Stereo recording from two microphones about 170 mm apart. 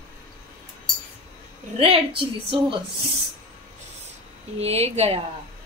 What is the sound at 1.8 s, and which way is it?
Speech, 35° right (ahead or behind).